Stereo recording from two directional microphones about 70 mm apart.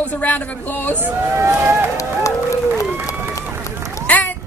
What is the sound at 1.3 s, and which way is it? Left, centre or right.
Speech, right.